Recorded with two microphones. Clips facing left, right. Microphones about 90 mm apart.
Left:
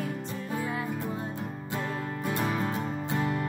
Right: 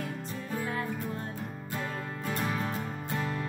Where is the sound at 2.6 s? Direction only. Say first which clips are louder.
Left 4 dB; 15° left (ahead or behind).